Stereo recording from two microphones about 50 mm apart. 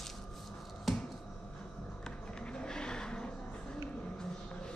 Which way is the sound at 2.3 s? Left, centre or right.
Centre.